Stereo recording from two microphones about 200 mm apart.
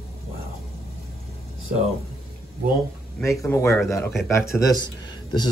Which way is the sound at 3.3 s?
15° left (ahead or behind).